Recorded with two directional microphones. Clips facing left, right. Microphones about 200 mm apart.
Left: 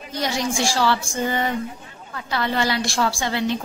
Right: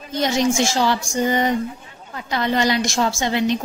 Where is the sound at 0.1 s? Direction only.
20° right (ahead or behind).